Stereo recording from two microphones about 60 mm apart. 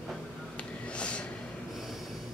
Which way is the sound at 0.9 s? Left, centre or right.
Centre.